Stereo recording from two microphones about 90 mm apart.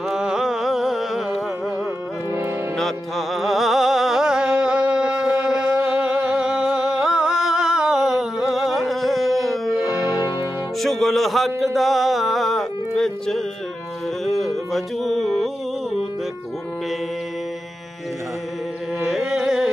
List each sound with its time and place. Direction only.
0.1 s music: 5° right (ahead or behind)
2.8 s music: centre (ahead or behind)
9.8 s music: 30° right (ahead or behind)
10.1 s music: 50° left (ahead or behind)
10.8 s a sound: centre (ahead or behind)
18.9 s carnatic music: 5° right (ahead or behind)